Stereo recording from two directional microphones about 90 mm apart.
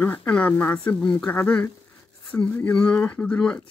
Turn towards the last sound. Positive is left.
turn(degrees=10)  # may be behind; listen again after turning